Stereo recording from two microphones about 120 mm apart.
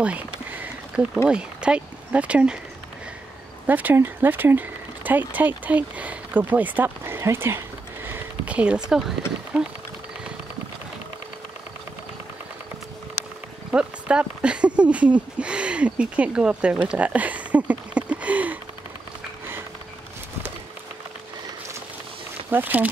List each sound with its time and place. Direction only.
0.0 s a sound: 10° right (ahead or behind)
1.3 s speech: 10° right (ahead or behind)
3.6 s speech: 15° right (ahead or behind)
13.7 s speech: 10° right (ahead or behind)
22.5 s speech: 15° right (ahead or behind)